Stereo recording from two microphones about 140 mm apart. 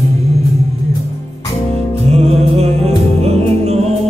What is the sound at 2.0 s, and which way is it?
Music, 50° right (ahead or behind).